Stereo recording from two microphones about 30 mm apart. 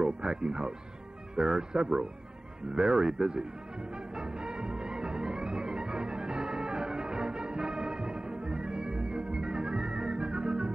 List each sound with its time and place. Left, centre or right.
0.0 s speech: right
4.2 s music: right